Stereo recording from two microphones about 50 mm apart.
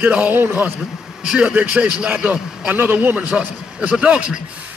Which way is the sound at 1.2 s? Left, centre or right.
Centre.